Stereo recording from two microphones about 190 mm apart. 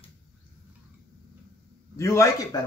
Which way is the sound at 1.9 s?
15° left (ahead or behind).